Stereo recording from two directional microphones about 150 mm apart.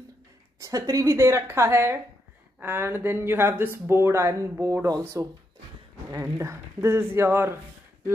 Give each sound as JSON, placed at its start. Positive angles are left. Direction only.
{"t": 0.6, "sound": "a woman's voice", "side_deg": -20}